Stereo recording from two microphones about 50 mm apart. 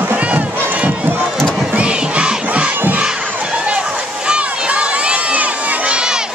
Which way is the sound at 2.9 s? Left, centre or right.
Right.